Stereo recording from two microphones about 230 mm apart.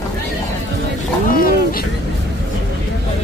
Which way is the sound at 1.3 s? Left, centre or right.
Left.